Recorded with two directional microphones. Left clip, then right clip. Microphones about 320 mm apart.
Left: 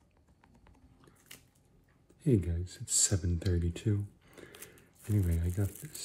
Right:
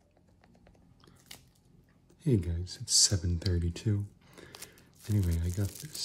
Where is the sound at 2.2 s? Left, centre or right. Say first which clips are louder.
Left 1 dB; centre.